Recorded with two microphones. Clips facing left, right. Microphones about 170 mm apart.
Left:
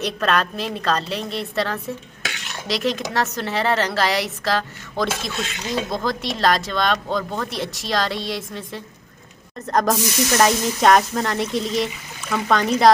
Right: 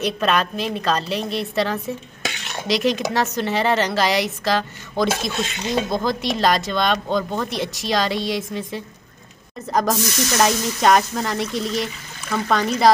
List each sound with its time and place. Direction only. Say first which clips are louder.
0.0 s speech: right 1 dB; centre (ahead or behind)
5.3 s speech: right 3 dB; 25° right (ahead or behind)
5.9 s speech: right 2 dB; centre (ahead or behind)